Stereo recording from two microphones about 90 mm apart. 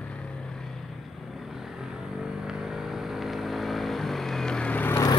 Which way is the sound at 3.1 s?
Centre (ahead or behind).